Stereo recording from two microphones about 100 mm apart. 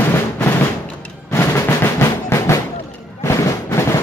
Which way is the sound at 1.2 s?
25° left (ahead or behind).